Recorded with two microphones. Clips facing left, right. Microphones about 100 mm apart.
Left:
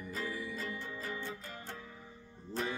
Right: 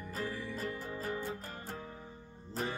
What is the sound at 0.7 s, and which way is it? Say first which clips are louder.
Music: right 3 dB; 45° right (ahead or behind).